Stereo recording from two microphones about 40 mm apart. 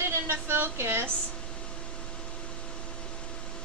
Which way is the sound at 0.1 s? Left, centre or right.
Right.